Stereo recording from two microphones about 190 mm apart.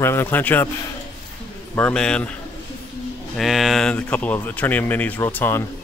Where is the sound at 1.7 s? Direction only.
5° left (ahead or behind).